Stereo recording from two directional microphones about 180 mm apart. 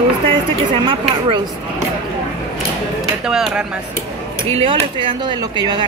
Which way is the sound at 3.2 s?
5° right (ahead or behind).